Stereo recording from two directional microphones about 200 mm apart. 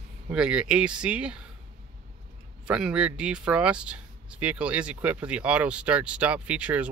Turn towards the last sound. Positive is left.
turn(degrees=-5)  # may be behind; listen again after turning